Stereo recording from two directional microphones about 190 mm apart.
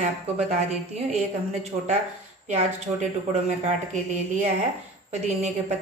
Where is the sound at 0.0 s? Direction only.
35° right (ahead or behind).